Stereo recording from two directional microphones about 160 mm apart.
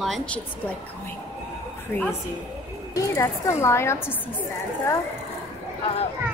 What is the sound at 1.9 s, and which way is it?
A woman's voice, 15° left (ahead or behind).